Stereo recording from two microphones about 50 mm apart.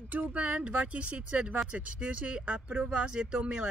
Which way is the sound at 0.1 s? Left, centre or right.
Right.